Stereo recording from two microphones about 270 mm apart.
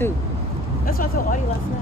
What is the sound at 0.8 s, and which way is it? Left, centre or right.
Speech, left.